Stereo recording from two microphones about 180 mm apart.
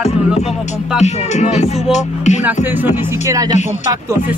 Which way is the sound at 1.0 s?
40° left (ahead or behind).